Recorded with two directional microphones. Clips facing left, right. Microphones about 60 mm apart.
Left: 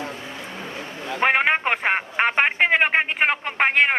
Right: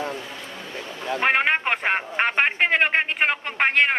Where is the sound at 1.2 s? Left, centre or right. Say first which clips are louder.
Left 2 dB; centre.